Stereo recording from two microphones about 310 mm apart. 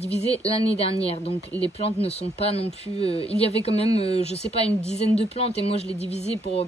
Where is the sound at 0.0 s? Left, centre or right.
Centre.